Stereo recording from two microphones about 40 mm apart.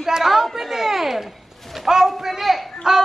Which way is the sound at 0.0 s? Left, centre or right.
Centre.